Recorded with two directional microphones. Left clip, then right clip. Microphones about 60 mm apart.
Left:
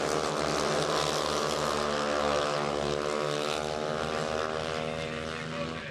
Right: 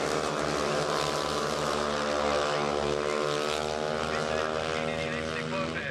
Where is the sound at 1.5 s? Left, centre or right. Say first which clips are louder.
Even; centre.